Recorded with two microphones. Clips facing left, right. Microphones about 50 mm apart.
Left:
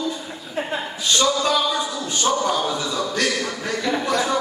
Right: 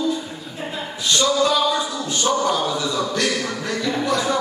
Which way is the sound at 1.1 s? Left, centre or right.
Centre.